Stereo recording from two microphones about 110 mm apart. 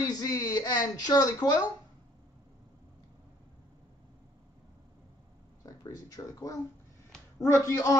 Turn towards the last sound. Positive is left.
turn(degrees=30)  # may be behind; listen again after turning